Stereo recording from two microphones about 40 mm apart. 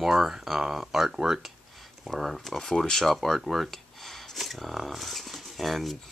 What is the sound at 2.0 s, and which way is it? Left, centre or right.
Speech, centre.